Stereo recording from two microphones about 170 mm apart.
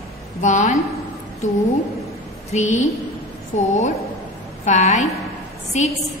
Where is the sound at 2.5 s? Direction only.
45° left (ahead or behind).